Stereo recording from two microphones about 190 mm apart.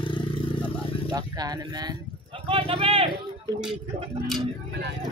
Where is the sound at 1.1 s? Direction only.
20° right (ahead or behind).